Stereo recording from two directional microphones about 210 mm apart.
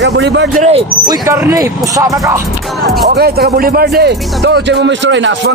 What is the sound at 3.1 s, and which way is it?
Speech, 50° right (ahead or behind).